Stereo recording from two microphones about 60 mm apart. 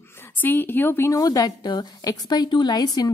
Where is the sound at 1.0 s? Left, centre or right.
Left.